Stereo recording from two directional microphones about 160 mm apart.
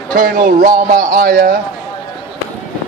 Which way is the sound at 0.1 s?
60° right (ahead or behind).